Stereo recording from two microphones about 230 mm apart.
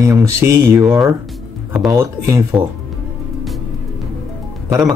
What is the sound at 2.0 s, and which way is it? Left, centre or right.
Speech, centre.